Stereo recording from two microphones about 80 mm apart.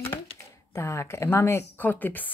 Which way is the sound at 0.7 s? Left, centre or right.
Left.